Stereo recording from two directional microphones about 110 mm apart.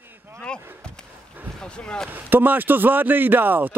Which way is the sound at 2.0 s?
15° right (ahead or behind).